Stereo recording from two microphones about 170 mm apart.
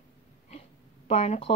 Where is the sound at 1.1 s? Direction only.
35° left (ahead or behind).